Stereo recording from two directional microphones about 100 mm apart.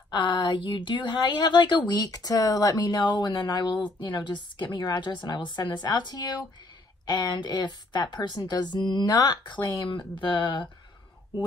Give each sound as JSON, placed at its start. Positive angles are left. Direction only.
{"t": 0.1, "sound": "a woman's voice", "side_deg": 50}
{"t": 9.8, "sound": "a woman's voice", "side_deg": 55}